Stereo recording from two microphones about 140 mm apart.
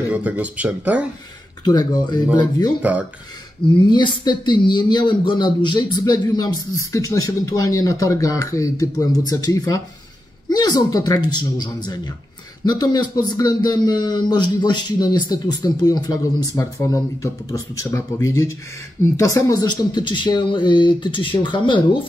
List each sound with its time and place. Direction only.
0.1 s speech: 10° right (ahead or behind)
1.6 s a man's voice: 30° left (ahead or behind)
2.8 s speech: 10° right (ahead or behind)
3.9 s a man's voice: 35° left (ahead or behind)